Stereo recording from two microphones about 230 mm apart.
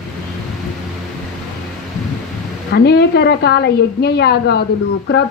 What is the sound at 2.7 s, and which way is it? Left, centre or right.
A woman's voice, left.